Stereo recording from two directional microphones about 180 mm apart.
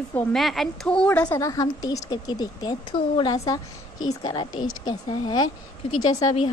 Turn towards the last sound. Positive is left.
turn(degrees=35)  # may be behind; listen again after turning